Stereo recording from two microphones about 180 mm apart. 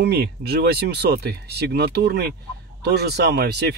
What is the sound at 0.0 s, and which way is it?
Speech, 65° right (ahead or behind).